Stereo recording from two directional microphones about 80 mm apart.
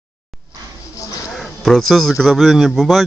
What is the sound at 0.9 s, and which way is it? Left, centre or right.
Snake, left.